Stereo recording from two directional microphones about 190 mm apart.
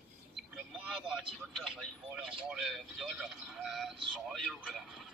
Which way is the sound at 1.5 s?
Centre (ahead or behind).